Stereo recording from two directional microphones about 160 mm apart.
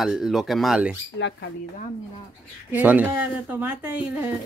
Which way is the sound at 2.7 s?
10° right (ahead or behind).